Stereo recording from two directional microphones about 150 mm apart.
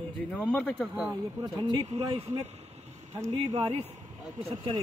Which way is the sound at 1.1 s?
25° right (ahead or behind).